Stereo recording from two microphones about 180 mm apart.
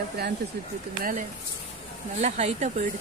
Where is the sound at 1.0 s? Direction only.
45° right (ahead or behind).